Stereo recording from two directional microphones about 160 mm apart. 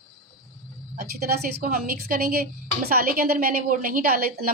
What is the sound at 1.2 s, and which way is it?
A woman's voice, 75° right (ahead or behind).